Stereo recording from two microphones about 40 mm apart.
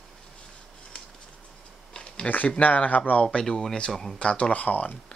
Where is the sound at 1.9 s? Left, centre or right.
Left.